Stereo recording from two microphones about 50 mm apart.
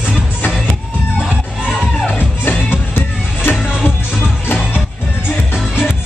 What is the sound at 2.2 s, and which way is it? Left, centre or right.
Music, left.